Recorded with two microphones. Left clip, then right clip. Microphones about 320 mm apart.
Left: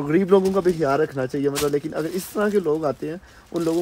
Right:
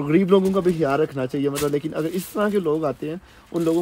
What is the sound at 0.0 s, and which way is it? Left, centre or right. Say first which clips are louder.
Speech: even; right.